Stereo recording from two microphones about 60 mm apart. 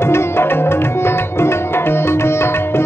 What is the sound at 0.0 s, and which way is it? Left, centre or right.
Music, left.